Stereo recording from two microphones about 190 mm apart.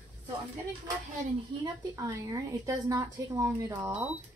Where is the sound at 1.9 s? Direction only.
15° right (ahead or behind).